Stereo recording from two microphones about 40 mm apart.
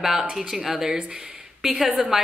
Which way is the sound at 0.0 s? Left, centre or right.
Centre.